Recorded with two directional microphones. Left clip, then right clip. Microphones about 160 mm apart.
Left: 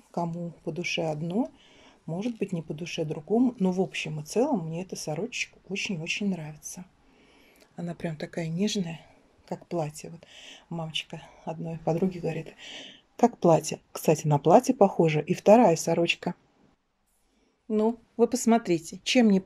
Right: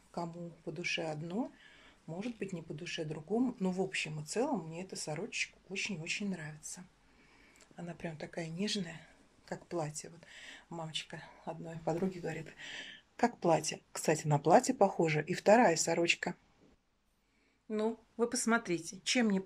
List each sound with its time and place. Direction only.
0.1 s speech: 20° left (ahead or behind)
17.6 s speech: 20° left (ahead or behind)